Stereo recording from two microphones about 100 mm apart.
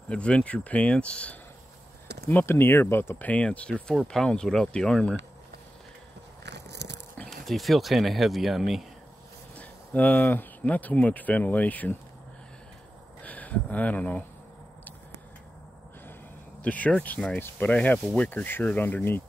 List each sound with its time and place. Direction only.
0.1 s speech: 10° left (ahead or behind)
2.2 s speech: 25° left (ahead or behind)
7.2 s speech: centre (ahead or behind)
9.6 s speech: 15° left (ahead or behind)
13.2 s speech: 15° left (ahead or behind)
16.6 s speech: 15° left (ahead or behind)